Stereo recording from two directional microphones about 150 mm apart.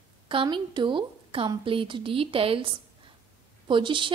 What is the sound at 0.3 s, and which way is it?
A woman's voice, 35° right (ahead or behind).